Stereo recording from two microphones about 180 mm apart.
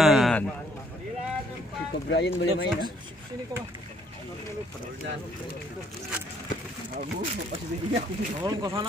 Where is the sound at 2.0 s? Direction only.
75° left (ahead or behind).